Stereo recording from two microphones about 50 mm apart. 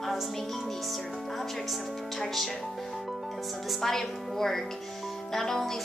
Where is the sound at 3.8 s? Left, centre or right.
Centre.